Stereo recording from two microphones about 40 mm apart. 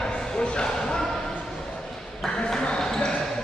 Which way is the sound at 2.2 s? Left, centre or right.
Centre.